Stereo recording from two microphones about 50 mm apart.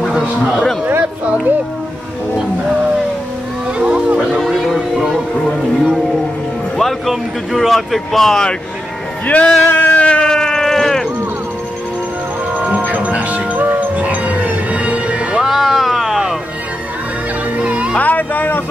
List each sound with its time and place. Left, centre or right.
0.5 s speech: centre
3.7 s music: right
4.3 s music: centre
5.3 s speech: centre
9.2 s speech: left
9.7 s a sound: left
10.0 s a sound: centre
12.5 s music: right
15.4 s a sound: centre
17.6 s music: right
17.9 s speech: left